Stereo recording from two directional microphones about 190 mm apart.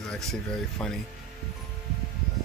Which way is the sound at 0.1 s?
Centre (ahead or behind).